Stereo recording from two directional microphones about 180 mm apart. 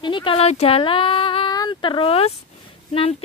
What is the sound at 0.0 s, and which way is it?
A woman's voice, 30° left (ahead or behind).